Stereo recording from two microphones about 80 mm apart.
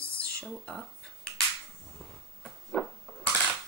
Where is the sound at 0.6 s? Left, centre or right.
Centre.